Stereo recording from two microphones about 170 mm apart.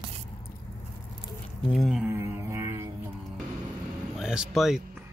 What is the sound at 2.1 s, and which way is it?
Mantra, 15° right (ahead or behind).